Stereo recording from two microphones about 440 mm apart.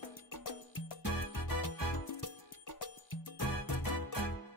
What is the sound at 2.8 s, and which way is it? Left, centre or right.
Music, left.